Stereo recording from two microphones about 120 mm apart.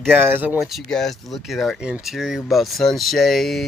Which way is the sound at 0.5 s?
Centre (ahead or behind).